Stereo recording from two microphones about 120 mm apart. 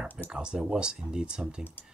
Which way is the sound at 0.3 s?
5° right (ahead or behind).